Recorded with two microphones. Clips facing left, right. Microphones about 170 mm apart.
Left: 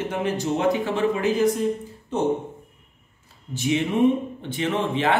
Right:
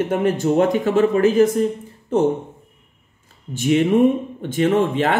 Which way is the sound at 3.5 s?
50° right (ahead or behind).